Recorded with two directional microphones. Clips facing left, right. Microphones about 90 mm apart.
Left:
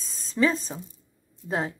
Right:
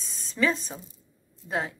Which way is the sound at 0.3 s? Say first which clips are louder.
Left 2 dB; 30° left (ahead or behind).